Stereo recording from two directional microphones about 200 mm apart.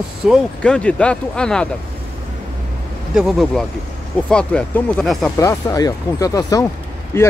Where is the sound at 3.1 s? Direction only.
Centre (ahead or behind).